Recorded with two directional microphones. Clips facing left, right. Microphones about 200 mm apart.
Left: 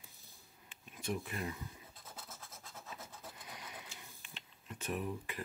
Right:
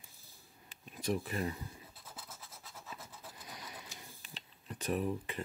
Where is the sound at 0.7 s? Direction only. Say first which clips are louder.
Right 5 dB; 35° right (ahead or behind).